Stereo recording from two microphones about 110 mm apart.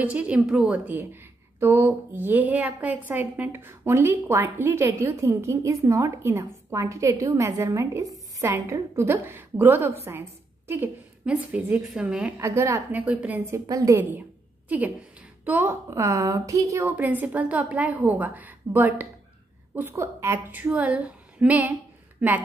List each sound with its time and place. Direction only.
0.0 s a woman's voice: 10° right (ahead or behind)
12.4 s a woman's voice: 25° right (ahead or behind)
12.9 s a woman's voice: 10° right (ahead or behind)
13.7 s a woman's voice: 35° right (ahead or behind)
15.4 s a woman's voice: 20° right (ahead or behind)
16.8 s a woman's voice: 15° right (ahead or behind)